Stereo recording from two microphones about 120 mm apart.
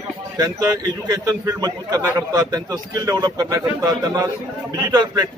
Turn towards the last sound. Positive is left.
turn(degrees=-30)  # may be behind; listen again after turning